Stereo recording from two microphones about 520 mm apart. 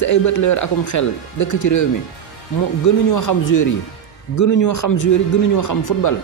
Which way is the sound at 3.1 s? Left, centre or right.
Left.